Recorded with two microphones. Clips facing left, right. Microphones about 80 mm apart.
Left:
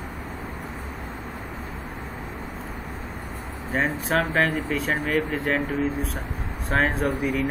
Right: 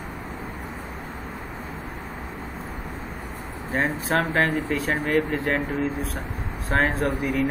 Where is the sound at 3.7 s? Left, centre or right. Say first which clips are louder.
Even; centre.